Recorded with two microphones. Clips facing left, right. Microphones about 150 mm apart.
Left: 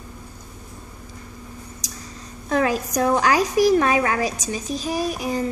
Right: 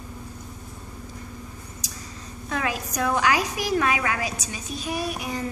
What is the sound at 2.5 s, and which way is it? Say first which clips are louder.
A woman's voice: left 7 dB; 35° left (ahead or behind).